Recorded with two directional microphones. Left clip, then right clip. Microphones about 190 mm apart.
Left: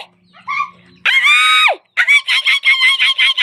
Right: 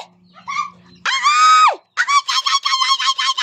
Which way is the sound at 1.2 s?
Centre (ahead or behind).